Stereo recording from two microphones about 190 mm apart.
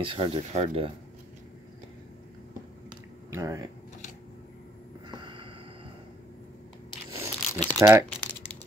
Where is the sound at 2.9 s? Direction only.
15° right (ahead or behind).